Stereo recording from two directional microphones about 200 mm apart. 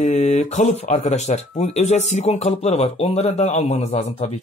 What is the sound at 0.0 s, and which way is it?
Speech, 35° left (ahead or behind).